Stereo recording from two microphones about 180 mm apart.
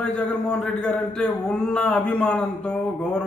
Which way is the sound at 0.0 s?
5° left (ahead or behind).